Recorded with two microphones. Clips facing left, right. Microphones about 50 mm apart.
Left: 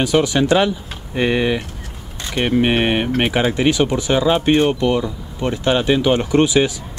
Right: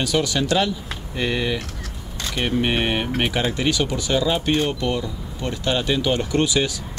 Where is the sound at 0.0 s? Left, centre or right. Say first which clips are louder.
Left 6 dB; left.